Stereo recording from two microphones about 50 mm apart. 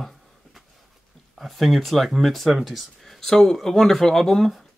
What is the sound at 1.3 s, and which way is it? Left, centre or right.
Speech, centre.